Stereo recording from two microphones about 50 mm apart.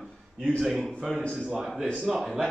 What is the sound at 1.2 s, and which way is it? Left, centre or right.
Speech, left.